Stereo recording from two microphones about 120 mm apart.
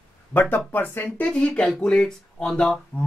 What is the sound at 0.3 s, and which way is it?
Speech, 15° left (ahead or behind).